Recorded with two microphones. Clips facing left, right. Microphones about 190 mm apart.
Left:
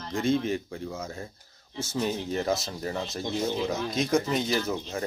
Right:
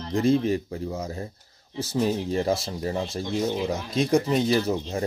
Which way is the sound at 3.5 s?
15° right (ahead or behind).